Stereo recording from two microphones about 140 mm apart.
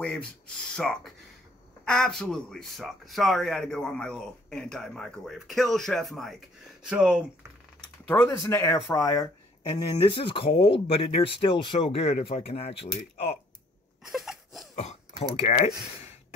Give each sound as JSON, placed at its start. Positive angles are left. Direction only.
{"t": 0.0, "sound": "speech", "side_deg": 5}
{"t": 8.1, "sound": "speech", "side_deg": 20}
{"t": 10.0, "sound": "speech", "side_deg": 35}
{"t": 14.1, "sound": "a sound", "side_deg": 0}
{"t": 14.8, "sound": "throat clearing", "side_deg": 50}
{"t": 15.4, "sound": "speech", "side_deg": 55}